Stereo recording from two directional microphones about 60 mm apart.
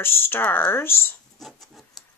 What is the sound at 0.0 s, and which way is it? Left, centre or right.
Speech, left.